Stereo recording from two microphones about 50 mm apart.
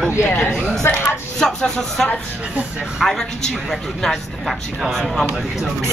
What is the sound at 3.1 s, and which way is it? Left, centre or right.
A man's voice, centre.